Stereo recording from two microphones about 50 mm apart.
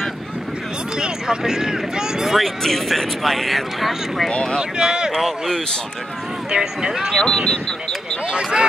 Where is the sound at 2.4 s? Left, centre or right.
Centre.